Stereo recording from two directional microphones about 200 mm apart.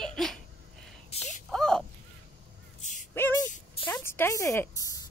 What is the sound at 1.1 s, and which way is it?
Speech, 30° left (ahead or behind).